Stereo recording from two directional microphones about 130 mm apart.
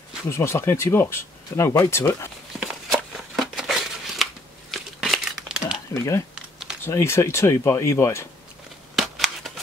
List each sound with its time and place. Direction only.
0.3 s speech: 20° left (ahead or behind)
2.6 s shuffling cards: centre (ahead or behind)
5.9 s speech: 20° left (ahead or behind)
6.3 s typing: 5° right (ahead or behind)
6.8 s speech: 20° left (ahead or behind)
8.9 s shuffling cards: centre (ahead or behind)